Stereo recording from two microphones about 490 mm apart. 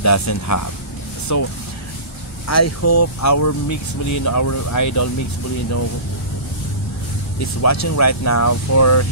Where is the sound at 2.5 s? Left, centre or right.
Left.